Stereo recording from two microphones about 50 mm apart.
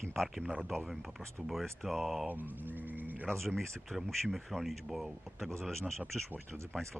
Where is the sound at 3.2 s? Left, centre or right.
Centre.